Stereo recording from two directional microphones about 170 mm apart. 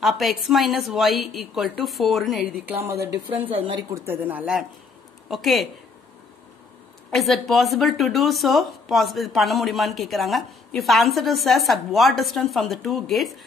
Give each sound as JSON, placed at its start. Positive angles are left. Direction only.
{"t": 0.0, "sound": "speech", "side_deg": 0}
{"t": 3.3, "sound": "a woman's voice", "side_deg": -30}
{"t": 3.9, "sound": "speech", "side_deg": -15}
{"t": 7.1, "sound": "speech", "side_deg": 0}